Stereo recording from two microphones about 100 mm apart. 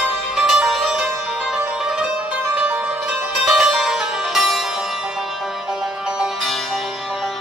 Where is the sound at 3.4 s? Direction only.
Centre (ahead or behind).